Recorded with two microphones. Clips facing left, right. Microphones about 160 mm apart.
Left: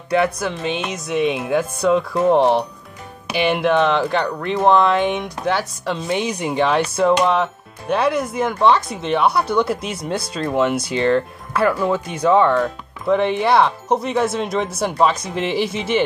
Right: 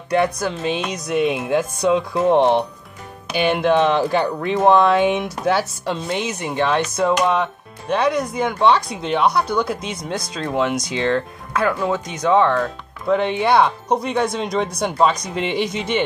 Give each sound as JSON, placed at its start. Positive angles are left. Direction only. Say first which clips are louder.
{"t": 0.2, "sound": "speech", "louder": "even", "side_deg": 0}
{"t": 7.2, "sound": "speech", "louder": "left 1 dB", "side_deg": -5}